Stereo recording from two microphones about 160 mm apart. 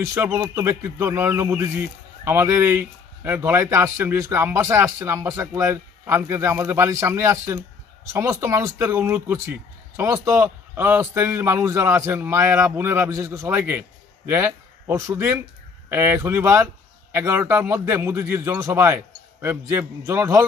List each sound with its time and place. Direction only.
0.0 s speech: 15° right (ahead or behind)